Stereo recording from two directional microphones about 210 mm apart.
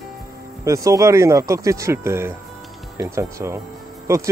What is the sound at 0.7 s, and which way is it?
Speech, 15° right (ahead or behind).